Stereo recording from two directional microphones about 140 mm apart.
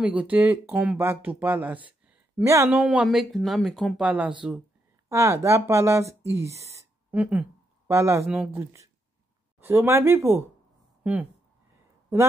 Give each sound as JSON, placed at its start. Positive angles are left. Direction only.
{"t": 0.0, "sound": "speech", "side_deg": -10}
{"t": 5.1, "sound": "speech", "side_deg": -20}
{"t": 7.1, "sound": "speech", "side_deg": -10}
{"t": 8.3, "sound": "speech", "side_deg": -10}